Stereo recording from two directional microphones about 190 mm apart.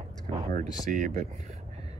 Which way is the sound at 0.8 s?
45° right (ahead or behind).